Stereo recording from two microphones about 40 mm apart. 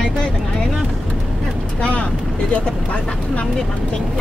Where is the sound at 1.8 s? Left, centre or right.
Left.